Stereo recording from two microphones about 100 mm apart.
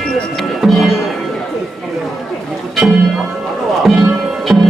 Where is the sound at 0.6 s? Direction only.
5° right (ahead or behind).